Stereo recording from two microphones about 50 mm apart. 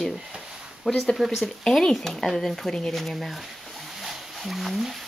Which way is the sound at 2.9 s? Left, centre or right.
Centre.